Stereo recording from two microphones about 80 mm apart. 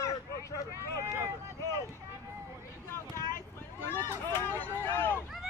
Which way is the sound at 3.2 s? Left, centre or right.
Left.